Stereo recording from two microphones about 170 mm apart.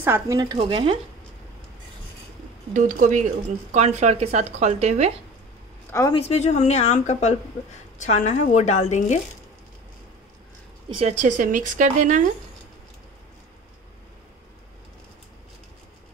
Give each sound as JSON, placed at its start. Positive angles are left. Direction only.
{"t": 0.0, "sound": "speech", "side_deg": -15}
{"t": 0.6, "sound": "speech", "side_deg": -30}
{"t": 2.7, "sound": "speech", "side_deg": -50}
{"t": 5.9, "sound": "speech", "side_deg": 15}
{"t": 6.1, "sound": "a woman's voice", "side_deg": 40}
{"t": 10.9, "sound": "speech", "side_deg": -40}